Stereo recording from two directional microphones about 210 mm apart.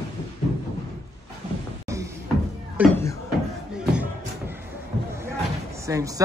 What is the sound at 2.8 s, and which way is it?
Speech, 10° right (ahead or behind).